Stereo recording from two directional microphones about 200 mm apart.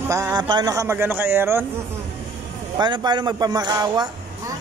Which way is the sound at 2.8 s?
20° right (ahead or behind).